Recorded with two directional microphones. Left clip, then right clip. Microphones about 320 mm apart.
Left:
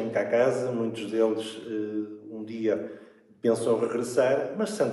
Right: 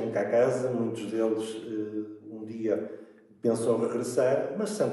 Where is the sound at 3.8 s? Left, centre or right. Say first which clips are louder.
Left 2 dB; centre.